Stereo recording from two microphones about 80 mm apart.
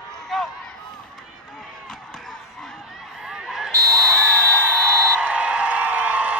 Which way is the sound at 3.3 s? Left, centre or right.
Centre.